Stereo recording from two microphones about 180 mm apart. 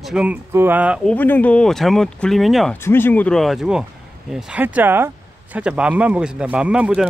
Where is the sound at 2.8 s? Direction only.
10° left (ahead or behind); by 7.1 s 5° right (ahead or behind).